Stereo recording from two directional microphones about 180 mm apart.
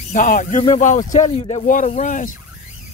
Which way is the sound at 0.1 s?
45° left (ahead or behind).